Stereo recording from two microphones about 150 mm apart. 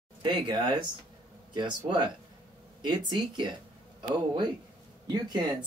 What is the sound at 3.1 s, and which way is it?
Speech, 30° right (ahead or behind).